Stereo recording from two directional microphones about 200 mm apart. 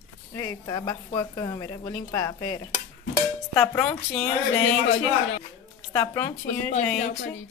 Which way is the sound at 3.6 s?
10° left (ahead or behind).